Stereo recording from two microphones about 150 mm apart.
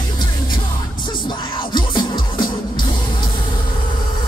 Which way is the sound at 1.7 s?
30° left (ahead or behind).